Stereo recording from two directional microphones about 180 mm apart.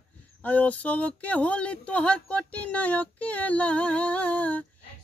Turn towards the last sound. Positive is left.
turn(degrees=10)  # may be behind; listen again after turning